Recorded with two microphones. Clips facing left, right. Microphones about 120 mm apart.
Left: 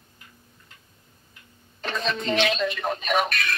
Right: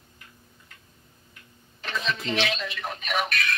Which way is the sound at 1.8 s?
40° left (ahead or behind).